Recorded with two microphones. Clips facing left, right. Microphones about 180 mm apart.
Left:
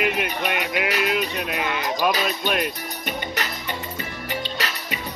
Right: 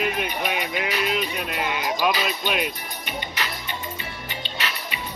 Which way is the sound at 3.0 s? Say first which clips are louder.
Left 2 dB; 40° left (ahead or behind).